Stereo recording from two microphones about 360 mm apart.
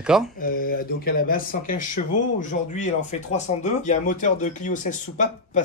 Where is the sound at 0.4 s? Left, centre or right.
Left.